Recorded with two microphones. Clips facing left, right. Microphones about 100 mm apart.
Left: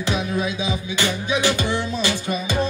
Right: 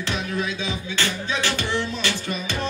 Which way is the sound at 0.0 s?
15° left (ahead or behind).